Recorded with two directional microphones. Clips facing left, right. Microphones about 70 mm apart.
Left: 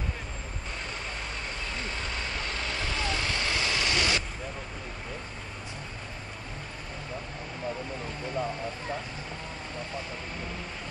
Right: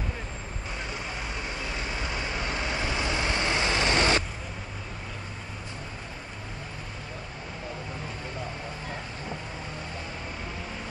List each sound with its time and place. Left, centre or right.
0.8 s vehicle: centre; by 4.2 s right